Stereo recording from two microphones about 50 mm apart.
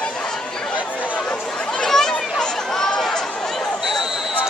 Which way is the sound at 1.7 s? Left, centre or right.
Centre.